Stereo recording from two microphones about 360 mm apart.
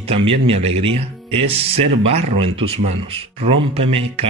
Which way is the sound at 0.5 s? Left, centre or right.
Centre.